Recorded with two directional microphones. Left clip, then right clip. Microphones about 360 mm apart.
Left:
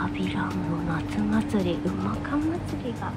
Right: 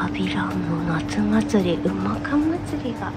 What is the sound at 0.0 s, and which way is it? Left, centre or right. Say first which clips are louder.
Speech: right 4 dB; centre.